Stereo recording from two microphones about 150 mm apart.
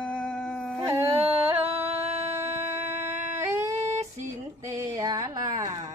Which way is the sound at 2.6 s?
15° right (ahead or behind).